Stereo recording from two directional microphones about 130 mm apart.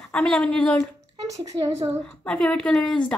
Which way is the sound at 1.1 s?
30° right (ahead or behind).